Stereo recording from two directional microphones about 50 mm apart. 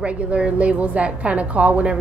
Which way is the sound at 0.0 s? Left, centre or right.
Right.